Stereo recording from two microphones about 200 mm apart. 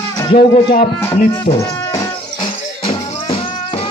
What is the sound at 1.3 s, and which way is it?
Speech, 20° left (ahead or behind).